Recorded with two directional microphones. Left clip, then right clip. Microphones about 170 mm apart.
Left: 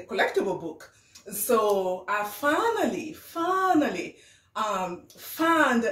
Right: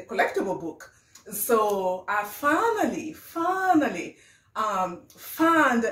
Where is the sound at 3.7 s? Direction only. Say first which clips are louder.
Right 1 dB; centre (ahead or behind).